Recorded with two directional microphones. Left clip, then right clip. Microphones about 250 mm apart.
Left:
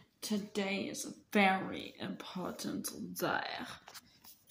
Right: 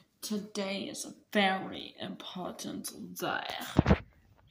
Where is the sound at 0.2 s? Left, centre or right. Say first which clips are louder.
Right 1 dB; centre.